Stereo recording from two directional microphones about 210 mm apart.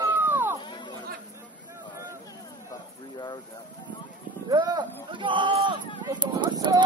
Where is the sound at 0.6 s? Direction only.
20° left (ahead or behind).